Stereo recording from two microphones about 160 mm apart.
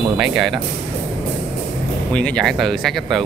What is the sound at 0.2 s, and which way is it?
Speech, centre (ahead or behind).